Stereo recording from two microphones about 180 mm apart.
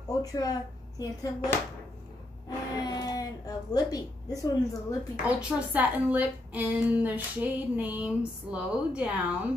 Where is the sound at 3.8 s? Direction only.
20° left (ahead or behind).